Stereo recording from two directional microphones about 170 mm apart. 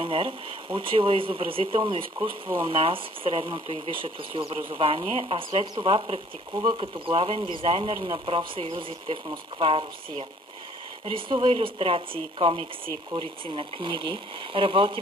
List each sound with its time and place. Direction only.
0.0 s speech: 35° right (ahead or behind)